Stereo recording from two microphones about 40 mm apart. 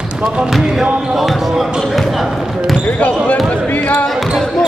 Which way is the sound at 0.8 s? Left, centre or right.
Right.